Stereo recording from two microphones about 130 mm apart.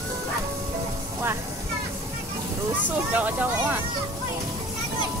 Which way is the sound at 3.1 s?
10° right (ahead or behind).